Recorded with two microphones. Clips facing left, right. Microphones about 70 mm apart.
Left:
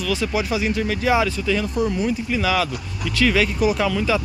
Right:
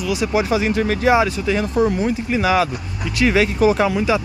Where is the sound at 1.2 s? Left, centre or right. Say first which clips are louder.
Right 2 dB; right.